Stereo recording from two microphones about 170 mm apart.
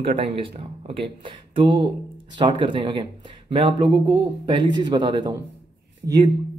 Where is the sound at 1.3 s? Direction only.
30° right (ahead or behind).